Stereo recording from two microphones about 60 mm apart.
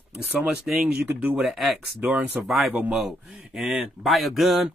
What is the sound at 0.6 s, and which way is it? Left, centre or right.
Speech, centre.